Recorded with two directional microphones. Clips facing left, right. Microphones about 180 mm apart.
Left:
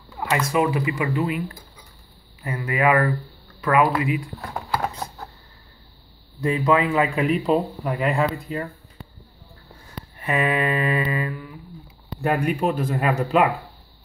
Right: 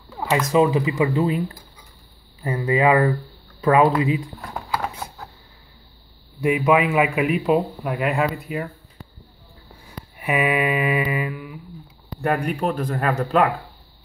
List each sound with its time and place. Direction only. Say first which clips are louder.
0.5 s speech: right 5 dB; 20° right (ahead or behind)
4.8 s a sound: left 1 dB; 5° right (ahead or behind)
6.4 s a man's voice: right 2 dB; 10° right (ahead or behind)
10.1 s a man's voice: right 1 dB; 10° right (ahead or behind)
12.2 s speech: even; 5° left (ahead or behind)